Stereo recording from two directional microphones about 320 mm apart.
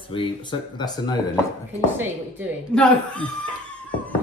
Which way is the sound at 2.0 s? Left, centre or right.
Centre.